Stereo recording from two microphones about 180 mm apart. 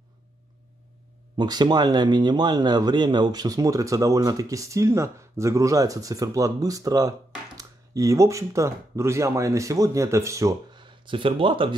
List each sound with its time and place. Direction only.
1.3 s speech: 25° right (ahead or behind)